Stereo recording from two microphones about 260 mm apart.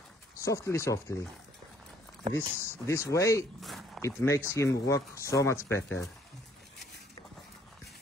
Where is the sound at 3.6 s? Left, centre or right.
Centre.